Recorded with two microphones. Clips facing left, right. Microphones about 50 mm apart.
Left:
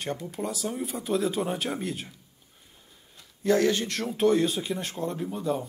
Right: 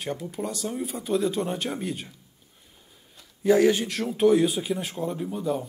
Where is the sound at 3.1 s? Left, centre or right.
Centre.